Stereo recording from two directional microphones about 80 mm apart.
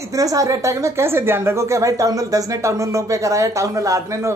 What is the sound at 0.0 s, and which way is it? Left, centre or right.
A woman's voice, right.